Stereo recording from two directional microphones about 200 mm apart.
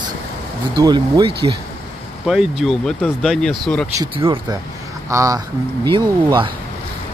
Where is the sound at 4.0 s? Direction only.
25° right (ahead or behind).